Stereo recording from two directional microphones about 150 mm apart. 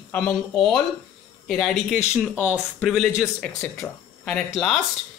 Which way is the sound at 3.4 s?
5° left (ahead or behind).